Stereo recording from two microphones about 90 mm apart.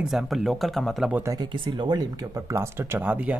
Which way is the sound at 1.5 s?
55° right (ahead or behind).